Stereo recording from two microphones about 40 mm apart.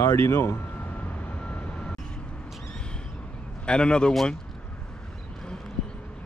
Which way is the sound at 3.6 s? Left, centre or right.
Left.